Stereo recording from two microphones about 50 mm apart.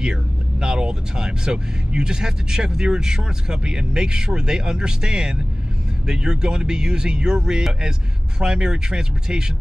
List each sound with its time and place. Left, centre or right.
0.0 s speech: centre